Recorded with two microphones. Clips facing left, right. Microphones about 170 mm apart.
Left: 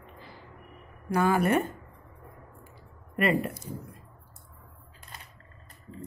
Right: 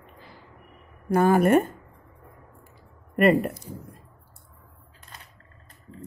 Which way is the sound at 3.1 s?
50° right (ahead or behind).